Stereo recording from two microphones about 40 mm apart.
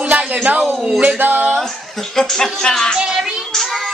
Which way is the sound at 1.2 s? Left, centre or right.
Right.